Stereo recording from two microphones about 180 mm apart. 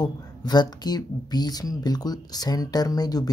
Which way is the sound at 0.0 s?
20° left (ahead or behind).